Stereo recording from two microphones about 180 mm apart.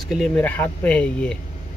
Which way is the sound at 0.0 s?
Centre (ahead or behind).